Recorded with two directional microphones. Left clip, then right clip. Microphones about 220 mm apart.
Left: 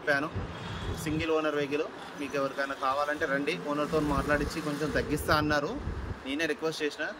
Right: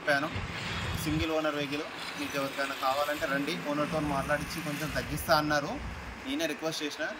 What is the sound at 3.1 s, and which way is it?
Speech, 20° left (ahead or behind).